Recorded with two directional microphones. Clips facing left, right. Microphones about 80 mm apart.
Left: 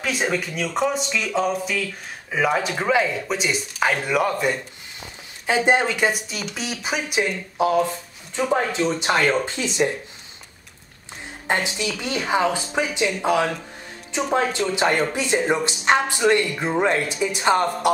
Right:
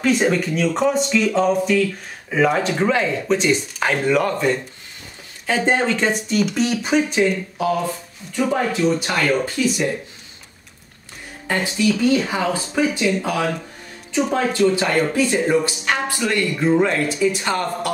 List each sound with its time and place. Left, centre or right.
0.0 s speech: centre
8.5 s speech: left
11.4 s speech: left